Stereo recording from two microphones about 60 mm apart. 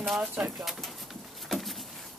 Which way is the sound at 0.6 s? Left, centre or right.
Centre.